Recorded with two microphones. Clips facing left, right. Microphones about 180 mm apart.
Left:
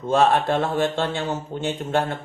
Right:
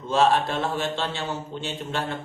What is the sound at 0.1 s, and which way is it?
A man's voice, 55° left (ahead or behind).